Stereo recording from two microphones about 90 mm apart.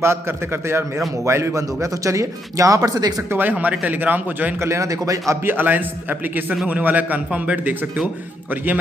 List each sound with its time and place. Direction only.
0.0 s a man's voice: 30° right (ahead or behind); by 3.2 s 45° right (ahead or behind)
3.3 s a man's voice: 20° right (ahead or behind)
4.6 s a man's voice: 35° right (ahead or behind)
5.3 s a man's voice: 25° right (ahead or behind)